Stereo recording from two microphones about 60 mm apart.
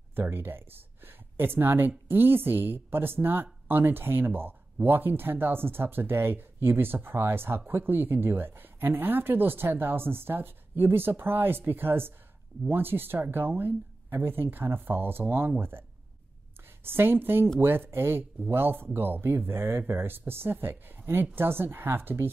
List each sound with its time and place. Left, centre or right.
0.1 s speech: right
16.8 s speech: right